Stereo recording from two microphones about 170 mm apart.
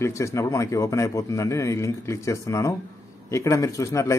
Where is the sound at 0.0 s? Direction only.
15° left (ahead or behind).